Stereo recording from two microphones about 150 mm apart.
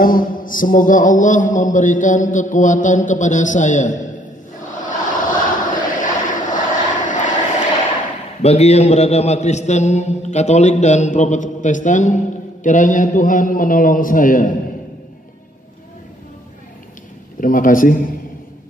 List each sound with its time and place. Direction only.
0.0 s mantra: 70° left (ahead or behind)
4.7 s vehicle: 60° left (ahead or behind)
8.4 s a man's voice: 45° left (ahead or behind)
12.6 s mantra: 55° left (ahead or behind)
17.4 s mantra: 65° left (ahead or behind)